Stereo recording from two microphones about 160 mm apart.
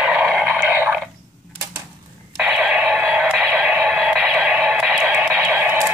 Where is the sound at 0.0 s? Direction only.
5° right (ahead or behind).